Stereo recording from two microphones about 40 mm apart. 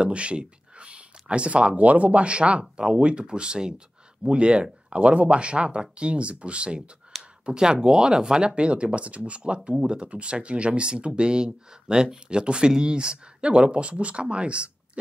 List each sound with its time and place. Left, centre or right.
0.0 s speech: right